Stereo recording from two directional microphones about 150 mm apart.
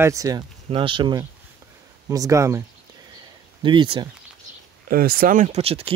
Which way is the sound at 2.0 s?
20° right (ahead or behind).